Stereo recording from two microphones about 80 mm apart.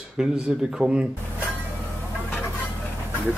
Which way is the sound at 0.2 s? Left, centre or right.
Centre.